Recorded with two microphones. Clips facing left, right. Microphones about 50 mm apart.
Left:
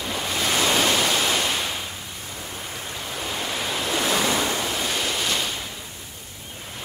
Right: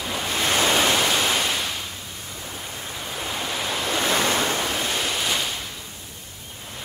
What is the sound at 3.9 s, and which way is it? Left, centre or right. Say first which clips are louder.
Waves: right 1 dB; right.